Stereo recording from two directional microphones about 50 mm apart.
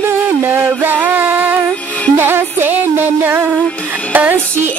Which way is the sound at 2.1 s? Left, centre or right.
Right.